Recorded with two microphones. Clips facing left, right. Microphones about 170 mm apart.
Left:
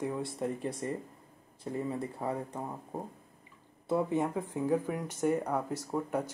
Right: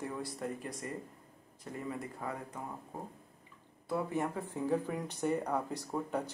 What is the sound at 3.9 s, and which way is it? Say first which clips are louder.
Speech: left 5 dB; 20° left (ahead or behind).